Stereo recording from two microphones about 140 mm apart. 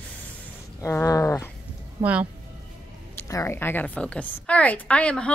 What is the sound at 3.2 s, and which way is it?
A woman's voice, 20° left (ahead or behind).